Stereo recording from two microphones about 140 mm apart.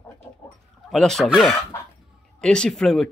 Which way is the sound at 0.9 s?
Centre (ahead or behind).